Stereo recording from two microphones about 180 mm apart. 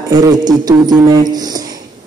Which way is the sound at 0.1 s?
20° right (ahead or behind).